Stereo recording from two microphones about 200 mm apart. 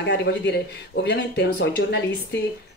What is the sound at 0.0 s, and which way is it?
Speech, 60° left (ahead or behind).